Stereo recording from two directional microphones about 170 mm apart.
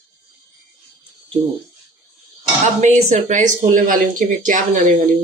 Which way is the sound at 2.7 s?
45° right (ahead or behind).